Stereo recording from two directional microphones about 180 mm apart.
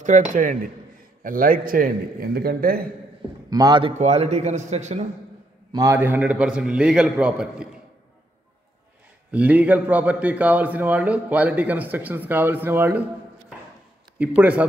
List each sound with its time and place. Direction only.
0.0 s a man's voice: 45° right (ahead or behind)
3.4 s a man's voice: 20° right (ahead or behind)
4.0 s a man's voice: 35° right (ahead or behind)
5.7 s a man's voice: 15° right (ahead or behind)
9.3 s a man's voice: 10° right (ahead or behind)
14.1 s a man's voice: 10° right (ahead or behind)